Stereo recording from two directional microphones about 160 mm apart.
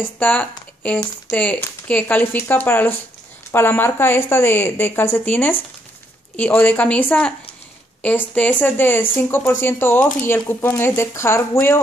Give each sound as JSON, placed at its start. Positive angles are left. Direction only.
{"t": 0.0, "sound": "speech", "side_deg": 10}